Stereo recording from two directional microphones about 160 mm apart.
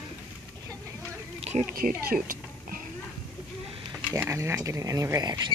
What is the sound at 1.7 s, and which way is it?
A woman's voice, 65° right (ahead or behind).